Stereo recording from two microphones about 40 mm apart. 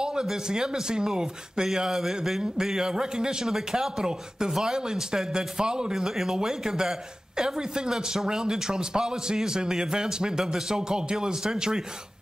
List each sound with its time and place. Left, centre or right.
0.0 s a man's voice: centre